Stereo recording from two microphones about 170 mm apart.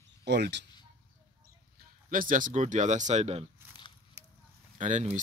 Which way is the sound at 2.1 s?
50° right (ahead or behind).